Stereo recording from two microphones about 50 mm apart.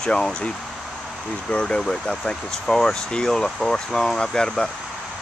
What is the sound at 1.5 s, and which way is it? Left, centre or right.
Speech, left.